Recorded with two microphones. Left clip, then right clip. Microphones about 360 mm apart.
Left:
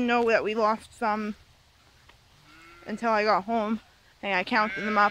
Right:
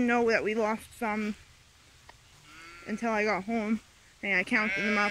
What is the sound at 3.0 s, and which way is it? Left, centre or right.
Speech, centre.